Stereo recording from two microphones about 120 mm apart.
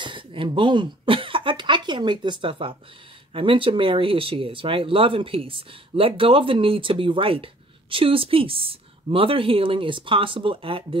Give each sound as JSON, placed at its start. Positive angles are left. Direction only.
{"t": 0.0, "sound": "speech", "side_deg": -45}